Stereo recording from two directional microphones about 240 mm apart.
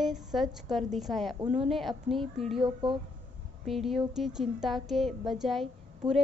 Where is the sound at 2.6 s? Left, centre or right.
Right.